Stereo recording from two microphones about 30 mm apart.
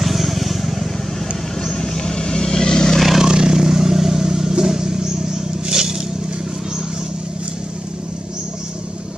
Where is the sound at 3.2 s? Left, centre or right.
Right.